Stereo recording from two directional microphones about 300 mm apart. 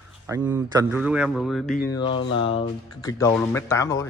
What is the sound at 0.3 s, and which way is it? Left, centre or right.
A man's voice, centre.